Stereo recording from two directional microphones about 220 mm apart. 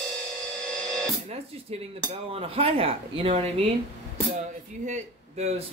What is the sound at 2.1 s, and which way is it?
Speech, 25° right (ahead or behind).